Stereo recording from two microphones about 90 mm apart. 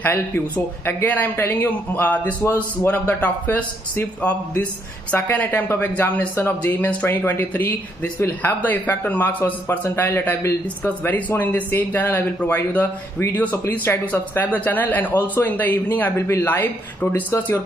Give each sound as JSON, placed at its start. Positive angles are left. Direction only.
{"t": 0.8, "sound": "speech", "side_deg": 20}